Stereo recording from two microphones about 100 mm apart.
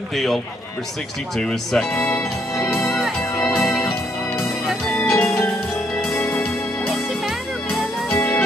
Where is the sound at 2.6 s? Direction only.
5° left (ahead or behind).